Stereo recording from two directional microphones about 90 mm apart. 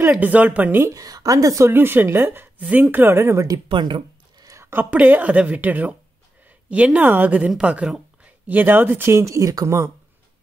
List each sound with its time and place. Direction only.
0.2 s speech: 15° right (ahead or behind)
0.9 s speech: 40° right (ahead or behind)
1.7 s speech: 25° right (ahead or behind)
3.6 s a sound: 65° right (ahead or behind)
4.5 s a sound: 30° right (ahead or behind)
4.9 s a woman's voice: 15° right (ahead or behind); by 9.8 s 35° right (ahead or behind)